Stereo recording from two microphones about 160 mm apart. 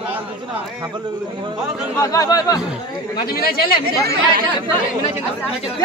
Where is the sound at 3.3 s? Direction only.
70° left (ahead or behind).